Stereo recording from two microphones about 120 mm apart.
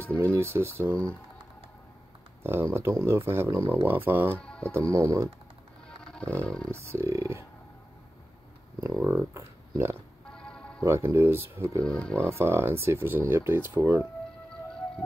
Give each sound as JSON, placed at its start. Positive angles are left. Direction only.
{"t": 0.2, "sound": "speech", "side_deg": -25}
{"t": 2.4, "sound": "speech", "side_deg": -20}
{"t": 4.4, "sound": "speech", "side_deg": 10}
{"t": 4.9, "sound": "speech", "side_deg": -25}
{"t": 6.4, "sound": "speech", "side_deg": 5}
{"t": 6.7, "sound": "speech", "side_deg": -25}
{"t": 8.8, "sound": "speech", "side_deg": -20}
{"t": 10.3, "sound": "music", "side_deg": 5}
{"t": 10.8, "sound": "speech", "side_deg": -20}
{"t": 11.8, "sound": "speech", "side_deg": 10}
{"t": 12.2, "sound": "speech", "side_deg": -20}